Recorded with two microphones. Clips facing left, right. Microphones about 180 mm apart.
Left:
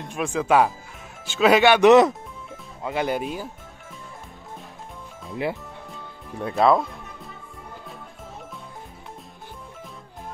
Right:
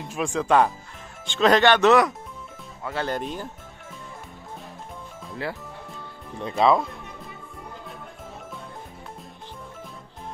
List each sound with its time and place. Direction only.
0.0 s speech: centre (ahead or behind)
5.3 s speech: 20° left (ahead or behind)
6.4 s speech: centre (ahead or behind)